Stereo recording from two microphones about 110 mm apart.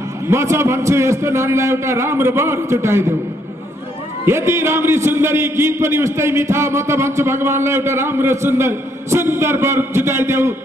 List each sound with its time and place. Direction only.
0.3 s a man's voice: 25° right (ahead or behind)
4.3 s a man's voice: 25° right (ahead or behind)